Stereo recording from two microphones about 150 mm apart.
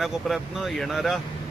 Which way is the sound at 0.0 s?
Centre (ahead or behind).